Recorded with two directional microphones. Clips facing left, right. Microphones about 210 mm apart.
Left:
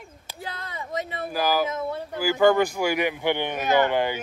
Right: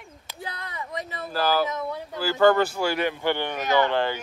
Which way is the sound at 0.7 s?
25° left (ahead or behind).